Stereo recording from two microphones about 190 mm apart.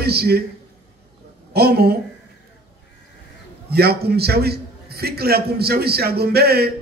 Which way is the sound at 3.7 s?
55° right (ahead or behind).